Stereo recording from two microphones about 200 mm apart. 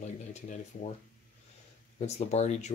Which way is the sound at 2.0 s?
35° left (ahead or behind).